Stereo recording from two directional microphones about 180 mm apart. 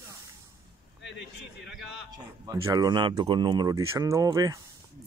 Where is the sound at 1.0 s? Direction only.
Centre (ahead or behind).